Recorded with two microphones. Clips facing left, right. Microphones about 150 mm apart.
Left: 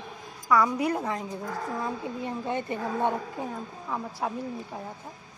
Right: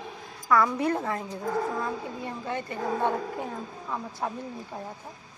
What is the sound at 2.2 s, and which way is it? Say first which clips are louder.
Speech: left 4 dB; 20° left (ahead or behind).